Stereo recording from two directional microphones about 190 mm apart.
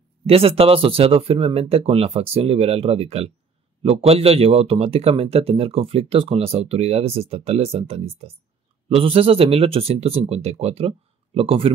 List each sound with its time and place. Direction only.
0.3 s speech: 30° right (ahead or behind)